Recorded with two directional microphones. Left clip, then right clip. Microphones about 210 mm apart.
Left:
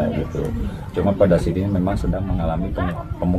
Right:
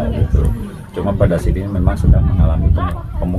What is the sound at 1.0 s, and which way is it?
Speech, 15° right (ahead or behind).